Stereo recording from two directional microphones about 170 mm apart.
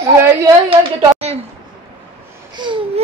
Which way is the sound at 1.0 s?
40° right (ahead or behind).